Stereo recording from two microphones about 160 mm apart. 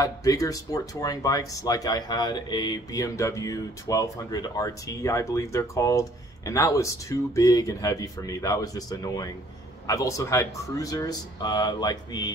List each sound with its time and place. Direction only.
0.0 s speech: 20° left (ahead or behind)